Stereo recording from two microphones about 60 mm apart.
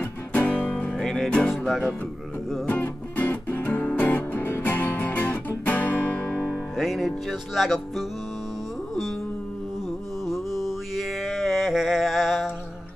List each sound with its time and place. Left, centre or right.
0.0 s music: left
0.8 s music: centre
2.6 s music: left
6.3 s music: left
6.8 s speech: centre
10.2 s mantra: centre